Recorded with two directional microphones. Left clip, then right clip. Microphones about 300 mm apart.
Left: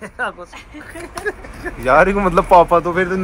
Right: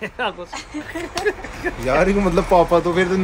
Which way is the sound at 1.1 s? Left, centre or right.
Right.